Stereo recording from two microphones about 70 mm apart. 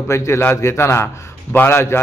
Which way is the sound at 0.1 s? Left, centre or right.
Left.